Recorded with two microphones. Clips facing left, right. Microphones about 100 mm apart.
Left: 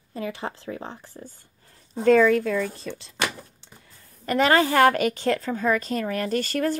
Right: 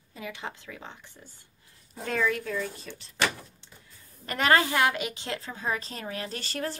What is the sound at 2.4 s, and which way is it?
Speech, 90° left.